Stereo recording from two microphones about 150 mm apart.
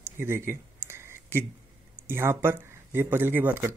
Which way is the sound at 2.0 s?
15° right (ahead or behind).